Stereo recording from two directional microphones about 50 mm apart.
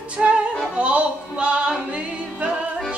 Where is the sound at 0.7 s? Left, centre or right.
Right.